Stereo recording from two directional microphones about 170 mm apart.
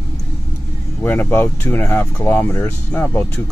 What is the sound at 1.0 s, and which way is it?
Speech, 10° left (ahead or behind).